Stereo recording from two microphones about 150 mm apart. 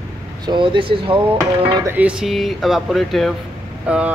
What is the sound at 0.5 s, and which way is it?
Speech, 35° right (ahead or behind).